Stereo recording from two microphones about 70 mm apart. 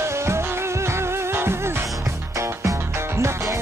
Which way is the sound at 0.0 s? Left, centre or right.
Right.